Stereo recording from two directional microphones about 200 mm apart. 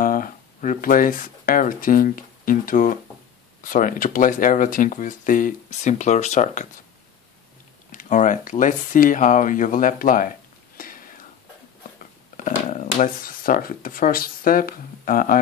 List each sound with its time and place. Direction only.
0.0 s speech: 45° left (ahead or behind)
7.9 s speech: 40° left (ahead or behind)
10.8 s whispering: 45° left (ahead or behind)
12.4 s speech: 40° left (ahead or behind)